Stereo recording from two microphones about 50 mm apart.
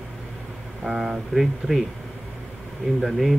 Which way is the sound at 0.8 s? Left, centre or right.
Centre.